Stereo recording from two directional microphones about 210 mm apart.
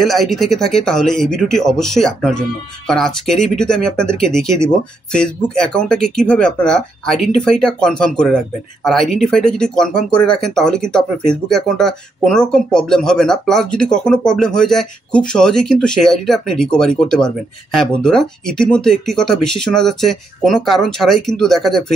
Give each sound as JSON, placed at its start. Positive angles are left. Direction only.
{"t": 0.0, "sound": "speech", "side_deg": 0}